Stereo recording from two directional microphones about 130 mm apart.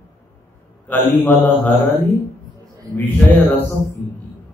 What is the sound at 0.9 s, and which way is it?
Mantra, 15° left (ahead or behind).